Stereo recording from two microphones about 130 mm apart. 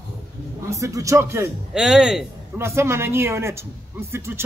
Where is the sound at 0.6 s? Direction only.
25° right (ahead or behind).